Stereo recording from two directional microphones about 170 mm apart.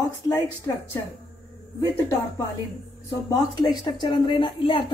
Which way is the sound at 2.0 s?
15° left (ahead or behind).